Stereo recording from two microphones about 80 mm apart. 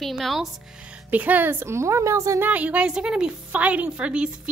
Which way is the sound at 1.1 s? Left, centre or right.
Centre.